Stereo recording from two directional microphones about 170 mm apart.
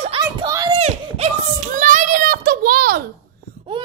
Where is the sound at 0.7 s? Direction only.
40° right (ahead or behind); by 3.0 s 65° right (ahead or behind).